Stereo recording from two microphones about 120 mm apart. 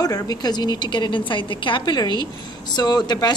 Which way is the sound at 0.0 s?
30° left (ahead or behind).